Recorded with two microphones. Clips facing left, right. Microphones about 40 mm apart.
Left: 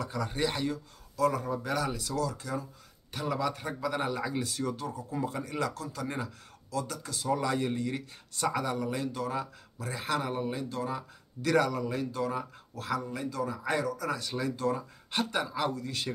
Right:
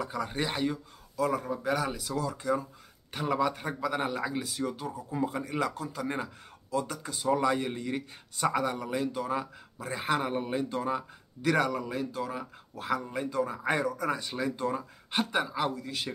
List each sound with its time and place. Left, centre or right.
0.0 s a man's voice: centre
11.4 s a man's voice: centre
12.7 s a man's voice: centre